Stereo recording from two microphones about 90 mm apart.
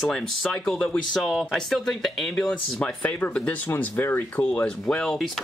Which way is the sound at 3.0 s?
15° left (ahead or behind).